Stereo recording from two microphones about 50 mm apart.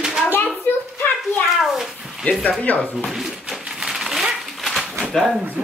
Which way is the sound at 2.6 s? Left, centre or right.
Left.